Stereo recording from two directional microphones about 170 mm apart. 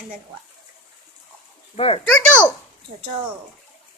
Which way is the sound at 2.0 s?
5° left (ahead or behind).